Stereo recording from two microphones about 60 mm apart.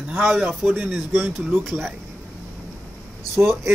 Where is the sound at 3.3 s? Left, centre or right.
Right.